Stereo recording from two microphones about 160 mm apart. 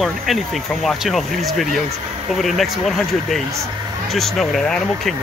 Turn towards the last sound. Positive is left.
turn(degrees=5)  # may be behind; listen again after turning